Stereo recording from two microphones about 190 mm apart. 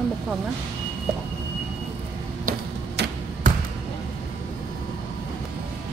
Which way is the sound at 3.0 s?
60° right (ahead or behind).